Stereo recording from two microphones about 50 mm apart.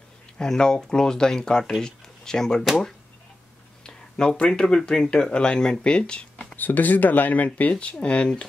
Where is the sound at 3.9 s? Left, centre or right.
Centre.